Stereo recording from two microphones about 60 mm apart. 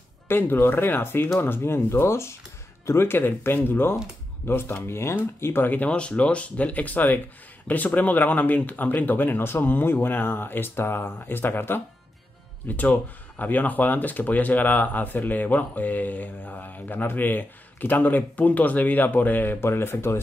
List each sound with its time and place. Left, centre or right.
0.3 s speech: left
5.7 s speech: left